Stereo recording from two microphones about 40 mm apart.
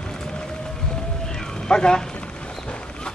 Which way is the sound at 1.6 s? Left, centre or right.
Centre.